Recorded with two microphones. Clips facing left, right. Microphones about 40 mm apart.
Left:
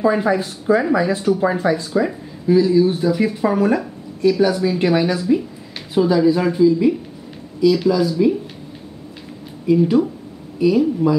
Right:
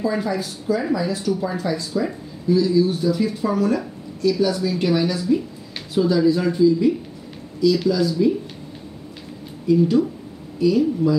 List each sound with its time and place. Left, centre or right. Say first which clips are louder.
0.0 s speech: left 6 dB; left; by 8.3 s centre
9.7 s speech: left 2 dB; centre